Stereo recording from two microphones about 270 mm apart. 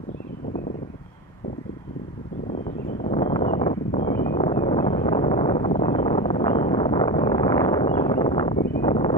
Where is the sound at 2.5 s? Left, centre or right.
Left.